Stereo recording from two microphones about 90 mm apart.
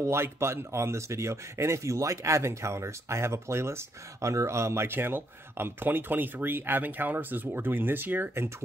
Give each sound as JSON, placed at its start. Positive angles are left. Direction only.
{"t": 0.0, "sound": "speech", "side_deg": -30}